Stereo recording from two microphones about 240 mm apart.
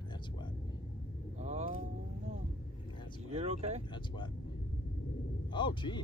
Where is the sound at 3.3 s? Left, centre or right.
Right.